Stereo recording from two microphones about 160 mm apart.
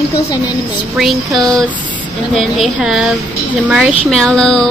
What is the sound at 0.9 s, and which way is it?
Speech, centre (ahead or behind).